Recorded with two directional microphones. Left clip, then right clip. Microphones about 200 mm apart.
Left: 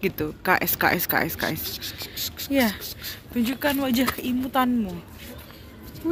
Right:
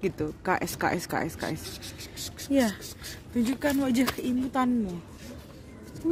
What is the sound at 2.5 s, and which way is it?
Speech, 20° right (ahead or behind).